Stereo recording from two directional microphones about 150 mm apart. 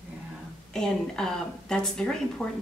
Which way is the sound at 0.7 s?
5° left (ahead or behind).